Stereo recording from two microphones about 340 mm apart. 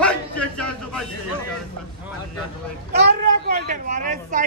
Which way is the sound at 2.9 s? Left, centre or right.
Right.